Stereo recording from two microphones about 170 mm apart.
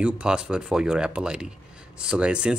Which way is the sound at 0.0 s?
5° right (ahead or behind).